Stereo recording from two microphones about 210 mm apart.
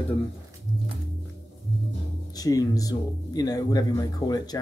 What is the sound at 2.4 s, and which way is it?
Speech, 15° left (ahead or behind).